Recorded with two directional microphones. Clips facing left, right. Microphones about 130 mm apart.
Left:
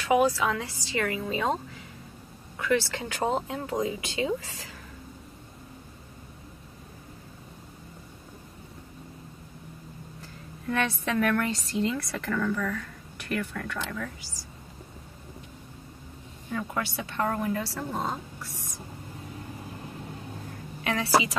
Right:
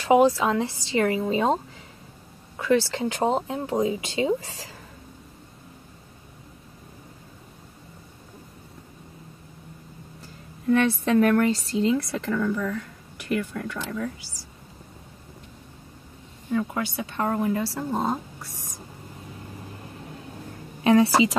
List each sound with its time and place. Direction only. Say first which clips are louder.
0.0 s speech: right 5 dB; 25° right (ahead or behind)
2.6 s speech: right 5 dB; 30° right (ahead or behind)
10.7 s a woman's voice: right 8 dB; 35° right (ahead or behind)
16.5 s speech: right 5 dB; 20° right (ahead or behind)
20.8 s a woman's voice: right 12 dB; 30° right (ahead or behind)